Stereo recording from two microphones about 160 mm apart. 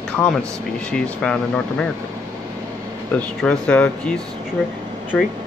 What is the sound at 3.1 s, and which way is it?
Speech, 5° left (ahead or behind).